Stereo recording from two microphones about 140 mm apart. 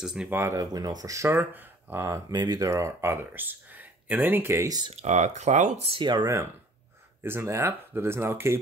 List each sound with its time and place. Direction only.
0.0 s speech: 5° right (ahead or behind)
0.3 s speech: 20° right (ahead or behind)
4.9 s speech: 55° right (ahead or behind)
5.9 s speech: 35° right (ahead or behind); by 8.5 s 15° right (ahead or behind)